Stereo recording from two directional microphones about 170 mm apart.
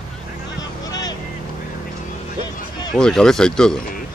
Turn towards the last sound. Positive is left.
turn(degrees=5)  # may be behind; listen again after turning